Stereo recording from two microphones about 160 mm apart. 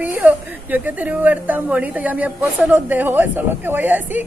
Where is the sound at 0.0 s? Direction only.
10° right (ahead or behind).